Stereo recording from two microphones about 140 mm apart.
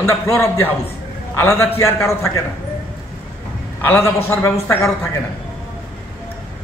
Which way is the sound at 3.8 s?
15° left (ahead or behind).